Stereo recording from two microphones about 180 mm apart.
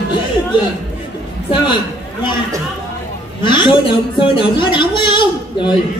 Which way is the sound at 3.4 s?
25° left (ahead or behind).